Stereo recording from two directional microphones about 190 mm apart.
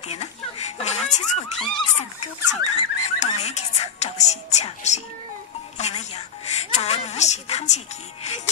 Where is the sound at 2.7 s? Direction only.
35° left (ahead or behind).